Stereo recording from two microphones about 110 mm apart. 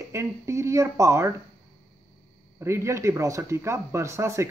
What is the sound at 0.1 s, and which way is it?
A man's voice, 25° right (ahead or behind).